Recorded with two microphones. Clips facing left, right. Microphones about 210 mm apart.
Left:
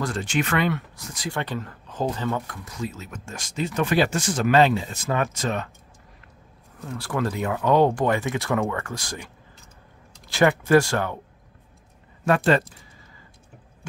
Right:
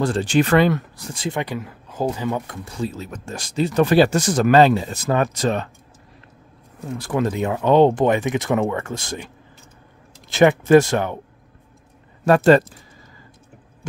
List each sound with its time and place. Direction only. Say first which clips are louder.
0.0 s speech: right 7 dB; 30° right (ahead or behind)
1.4 s speech: right 3 dB; 10° right (ahead or behind); by 5.7 s 35° right (ahead or behind)
6.8 s speech: right 5 dB; 20° right (ahead or behind)
10.3 s speech: right 5 dB; 20° right (ahead or behind)
12.3 s speech: right 7 dB; 40° right (ahead or behind)